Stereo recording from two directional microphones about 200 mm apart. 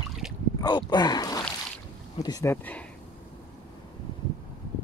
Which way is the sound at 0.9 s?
20° left (ahead or behind).